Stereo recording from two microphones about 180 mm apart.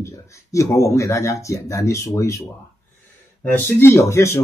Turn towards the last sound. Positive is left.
turn(degrees=15)  # may be behind; listen again after turning